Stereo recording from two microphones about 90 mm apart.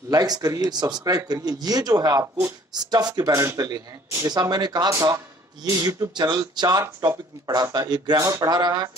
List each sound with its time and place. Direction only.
0.1 s speech: 45° right (ahead or behind)
3.3 s speech: 35° right (ahead or behind)